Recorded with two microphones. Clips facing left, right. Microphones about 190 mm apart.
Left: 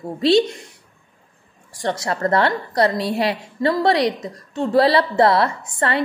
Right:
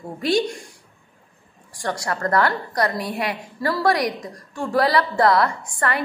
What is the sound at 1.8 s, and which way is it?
A woman's voice, 25° left (ahead or behind).